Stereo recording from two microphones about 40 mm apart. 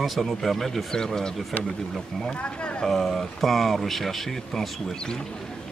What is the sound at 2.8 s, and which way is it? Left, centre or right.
Speech, centre.